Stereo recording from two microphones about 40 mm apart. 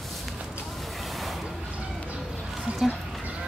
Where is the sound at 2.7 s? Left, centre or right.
Right.